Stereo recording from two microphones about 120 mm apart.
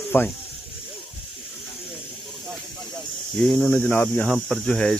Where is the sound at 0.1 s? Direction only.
15° left (ahead or behind).